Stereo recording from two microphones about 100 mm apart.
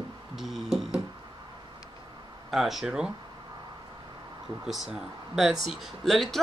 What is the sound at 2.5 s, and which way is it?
Speech, centre (ahead or behind).